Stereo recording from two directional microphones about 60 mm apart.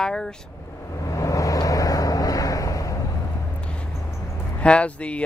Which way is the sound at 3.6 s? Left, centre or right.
Centre.